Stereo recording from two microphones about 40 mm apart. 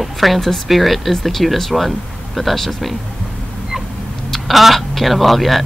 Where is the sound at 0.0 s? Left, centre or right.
Centre.